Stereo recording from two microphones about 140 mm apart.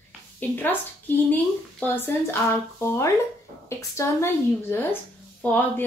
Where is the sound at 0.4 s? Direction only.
15° left (ahead or behind).